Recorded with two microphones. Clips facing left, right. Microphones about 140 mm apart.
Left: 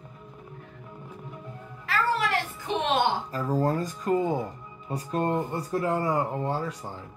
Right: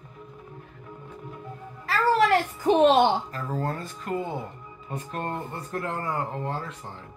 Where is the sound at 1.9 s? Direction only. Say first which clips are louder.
Right 5 dB; 40° right (ahead or behind).